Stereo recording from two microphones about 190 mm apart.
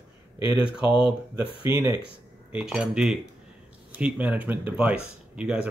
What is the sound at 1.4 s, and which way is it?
Speech, 30° left (ahead or behind).